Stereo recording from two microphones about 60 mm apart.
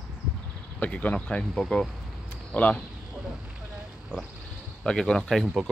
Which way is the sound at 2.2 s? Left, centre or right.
Left.